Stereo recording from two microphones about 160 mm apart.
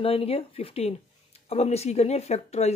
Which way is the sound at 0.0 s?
35° left (ahead or behind).